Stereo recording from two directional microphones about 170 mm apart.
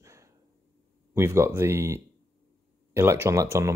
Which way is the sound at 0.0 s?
20° right (ahead or behind).